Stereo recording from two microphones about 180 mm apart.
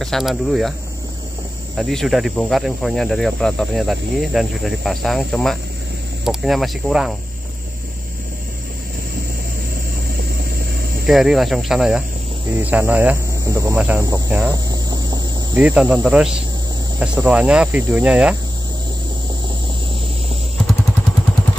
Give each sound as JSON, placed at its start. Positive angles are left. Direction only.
{"t": 0.0, "sound": "cricket", "side_deg": 0}
{"t": 1.8, "sound": "cricket", "side_deg": 0}
{"t": 11.1, "sound": "cricket", "side_deg": 0}
{"t": 12.5, "sound": "speech", "side_deg": -10}
{"t": 14.7, "sound": "cricket", "side_deg": -20}
{"t": 15.5, "sound": "cricket", "side_deg": -5}
{"t": 17.0, "sound": "speech", "side_deg": -5}